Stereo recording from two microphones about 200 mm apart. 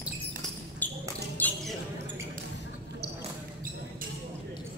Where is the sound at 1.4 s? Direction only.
10° left (ahead or behind).